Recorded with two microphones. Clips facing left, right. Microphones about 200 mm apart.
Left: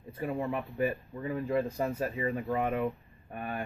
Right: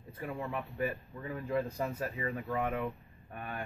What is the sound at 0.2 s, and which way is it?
Speech, 25° left (ahead or behind).